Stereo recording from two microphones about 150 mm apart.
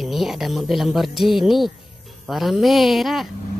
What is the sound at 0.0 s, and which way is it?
Speech, centre (ahead or behind).